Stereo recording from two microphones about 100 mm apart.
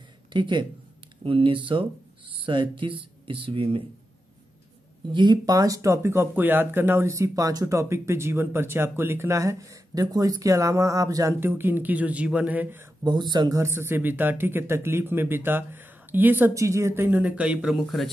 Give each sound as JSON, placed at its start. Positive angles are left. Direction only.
{"t": 0.3, "sound": "speech", "side_deg": -50}
{"t": 1.2, "sound": "speech", "side_deg": -60}
{"t": 5.1, "sound": "speech", "side_deg": -50}
{"t": 5.4, "sound": "speech", "side_deg": -35}
{"t": 11.3, "sound": "speech", "side_deg": -20}
{"t": 13.0, "sound": "speech", "side_deg": -45}
{"t": 13.6, "sound": "speech", "side_deg": -25}
{"t": 16.5, "sound": "speech", "side_deg": -30}